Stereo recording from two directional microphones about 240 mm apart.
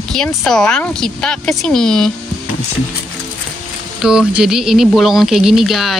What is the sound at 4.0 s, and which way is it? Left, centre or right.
Speech, centre.